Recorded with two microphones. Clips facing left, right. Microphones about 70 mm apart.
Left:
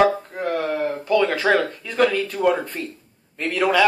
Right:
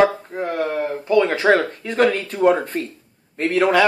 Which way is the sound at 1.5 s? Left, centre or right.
Right.